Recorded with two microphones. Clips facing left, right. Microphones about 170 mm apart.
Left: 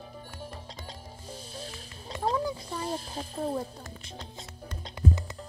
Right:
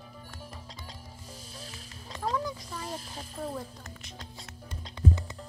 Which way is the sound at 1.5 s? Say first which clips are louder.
Left 4 dB; 30° left (ahead or behind).